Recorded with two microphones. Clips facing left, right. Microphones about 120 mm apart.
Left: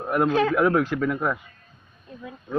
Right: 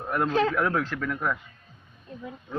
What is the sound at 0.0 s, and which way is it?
Speech, 10° left (ahead or behind).